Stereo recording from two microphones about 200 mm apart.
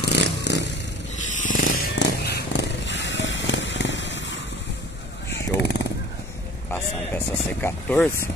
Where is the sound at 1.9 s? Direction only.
60° left (ahead or behind).